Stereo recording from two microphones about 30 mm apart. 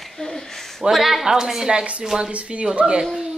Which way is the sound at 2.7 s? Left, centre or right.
Right.